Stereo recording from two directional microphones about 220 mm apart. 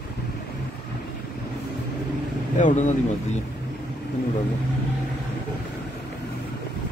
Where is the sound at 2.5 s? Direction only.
35° left (ahead or behind).